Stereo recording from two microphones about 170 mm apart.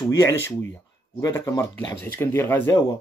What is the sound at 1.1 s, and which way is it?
Speech, 20° left (ahead or behind).